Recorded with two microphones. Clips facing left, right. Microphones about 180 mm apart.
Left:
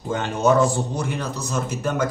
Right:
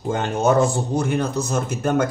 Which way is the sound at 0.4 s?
50° right (ahead or behind).